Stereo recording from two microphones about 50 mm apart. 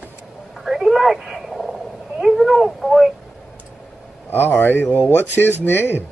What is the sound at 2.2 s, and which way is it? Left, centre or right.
Speech, centre.